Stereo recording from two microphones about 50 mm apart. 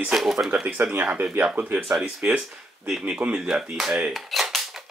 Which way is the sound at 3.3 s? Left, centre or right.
Centre.